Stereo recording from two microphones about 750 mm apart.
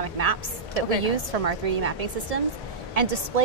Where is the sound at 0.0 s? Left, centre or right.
Right.